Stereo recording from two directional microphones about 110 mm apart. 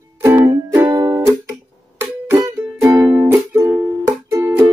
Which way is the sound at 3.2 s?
20° right (ahead or behind).